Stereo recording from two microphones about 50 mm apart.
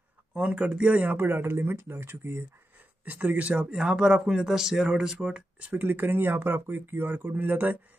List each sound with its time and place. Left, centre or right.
0.3 s speech: right
1.1 s speech: right
3.1 s speech: right
3.7 s speech: centre
5.6 s speech: right